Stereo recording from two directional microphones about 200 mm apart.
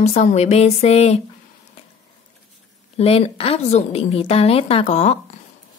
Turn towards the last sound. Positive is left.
turn(degrees=35)  # may be behind; listen again after turning